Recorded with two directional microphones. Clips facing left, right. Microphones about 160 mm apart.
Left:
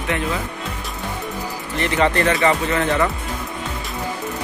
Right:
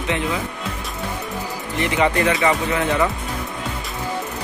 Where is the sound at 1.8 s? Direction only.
15° right (ahead or behind).